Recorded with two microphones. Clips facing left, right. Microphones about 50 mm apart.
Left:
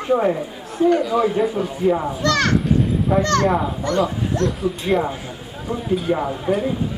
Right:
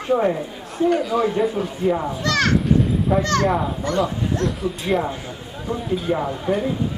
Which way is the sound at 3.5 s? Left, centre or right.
Centre.